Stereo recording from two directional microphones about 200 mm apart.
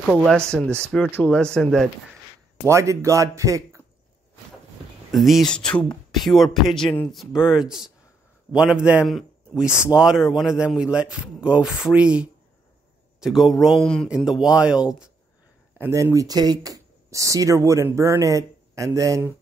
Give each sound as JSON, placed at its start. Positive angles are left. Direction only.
{"t": 0.1, "sound": "a man's voice", "side_deg": 5}
{"t": 2.6, "sound": "speech", "side_deg": -15}
{"t": 5.1, "sound": "a man's voice", "side_deg": 0}
{"t": 15.8, "sound": "speech", "side_deg": -15}